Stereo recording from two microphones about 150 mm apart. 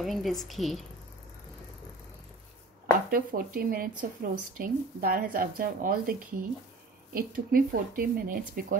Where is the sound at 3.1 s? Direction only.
75° right (ahead or behind).